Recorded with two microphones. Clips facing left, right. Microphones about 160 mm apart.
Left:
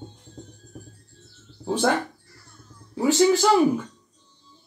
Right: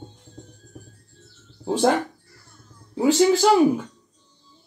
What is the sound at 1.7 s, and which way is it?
Speech, 15° right (ahead or behind).